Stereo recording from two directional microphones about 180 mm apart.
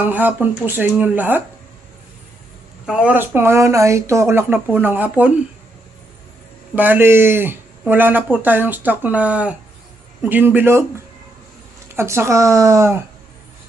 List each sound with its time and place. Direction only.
0.0 s speech: 10° right (ahead or behind)
2.9 s speech: 5° right (ahead or behind)
6.7 s speech: 10° right (ahead or behind)
11.9 s speech: 15° right (ahead or behind)